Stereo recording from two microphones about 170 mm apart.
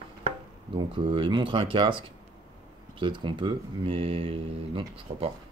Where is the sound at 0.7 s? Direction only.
30° right (ahead or behind).